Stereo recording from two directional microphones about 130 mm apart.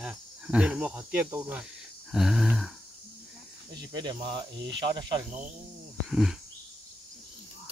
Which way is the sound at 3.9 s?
35° right (ahead or behind).